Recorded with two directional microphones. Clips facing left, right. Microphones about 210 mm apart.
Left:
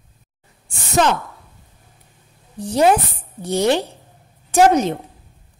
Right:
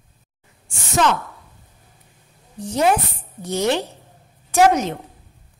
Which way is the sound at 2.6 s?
30° left (ahead or behind).